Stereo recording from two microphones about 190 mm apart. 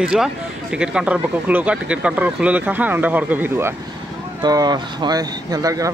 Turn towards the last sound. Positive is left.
turn(degrees=-20)  # may be behind; listen again after turning